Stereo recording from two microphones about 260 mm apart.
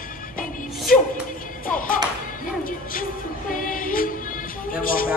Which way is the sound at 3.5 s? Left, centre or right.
Left.